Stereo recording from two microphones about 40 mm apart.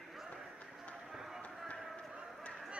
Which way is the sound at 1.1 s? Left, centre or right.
Centre.